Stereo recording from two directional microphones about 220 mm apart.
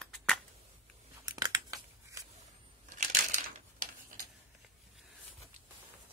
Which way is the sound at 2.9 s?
35° right (ahead or behind).